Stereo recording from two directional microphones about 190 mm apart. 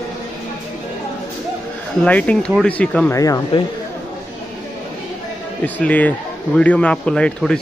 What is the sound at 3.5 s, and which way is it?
Speech, 30° left (ahead or behind).